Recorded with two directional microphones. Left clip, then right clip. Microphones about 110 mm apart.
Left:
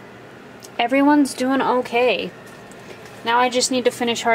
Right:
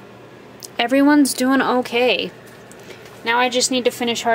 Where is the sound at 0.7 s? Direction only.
20° right (ahead or behind); by 4.3 s 5° right (ahead or behind).